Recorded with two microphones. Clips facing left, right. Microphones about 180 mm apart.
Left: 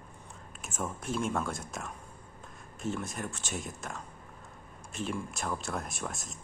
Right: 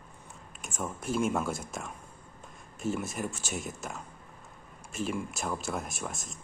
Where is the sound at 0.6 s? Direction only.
Centre (ahead or behind).